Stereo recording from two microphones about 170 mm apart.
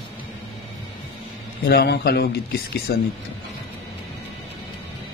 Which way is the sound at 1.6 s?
70° left (ahead or behind).